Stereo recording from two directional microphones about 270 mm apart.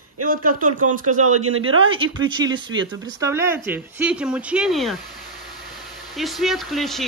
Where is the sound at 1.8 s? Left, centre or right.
Centre.